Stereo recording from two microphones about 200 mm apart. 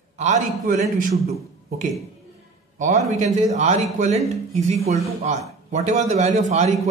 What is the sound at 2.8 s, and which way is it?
A man's voice, 40° right (ahead or behind).